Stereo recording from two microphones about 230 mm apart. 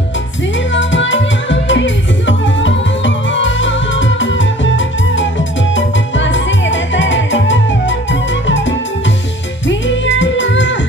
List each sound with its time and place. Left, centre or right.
0.7 s music: left